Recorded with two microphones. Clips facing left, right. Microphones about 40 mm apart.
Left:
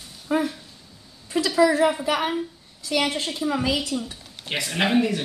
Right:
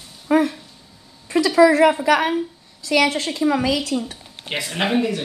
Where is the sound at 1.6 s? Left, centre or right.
Right.